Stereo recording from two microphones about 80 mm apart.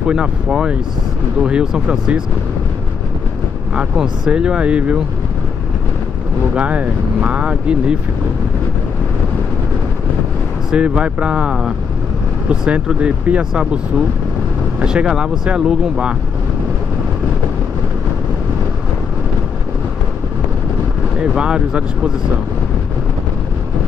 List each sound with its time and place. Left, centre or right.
0.0 s speech: centre
3.7 s speech: centre
6.5 s speech: centre
10.7 s speech: centre
14.8 s speech: centre
21.2 s speech: centre